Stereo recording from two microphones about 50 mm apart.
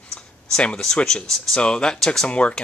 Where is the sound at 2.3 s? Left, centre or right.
Left.